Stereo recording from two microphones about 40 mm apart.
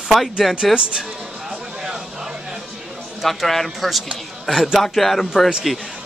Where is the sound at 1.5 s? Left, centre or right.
Centre.